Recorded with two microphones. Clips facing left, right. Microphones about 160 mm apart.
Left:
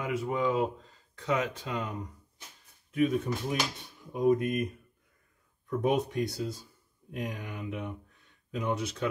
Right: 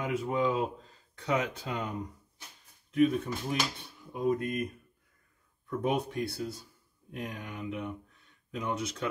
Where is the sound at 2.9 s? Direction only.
10° left (ahead or behind).